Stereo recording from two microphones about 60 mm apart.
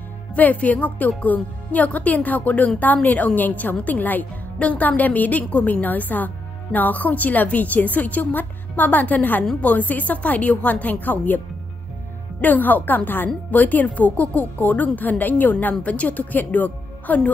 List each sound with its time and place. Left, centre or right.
0.3 s a woman's voice: left